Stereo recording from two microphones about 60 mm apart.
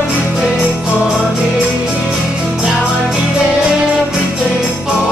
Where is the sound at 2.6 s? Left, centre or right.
Centre.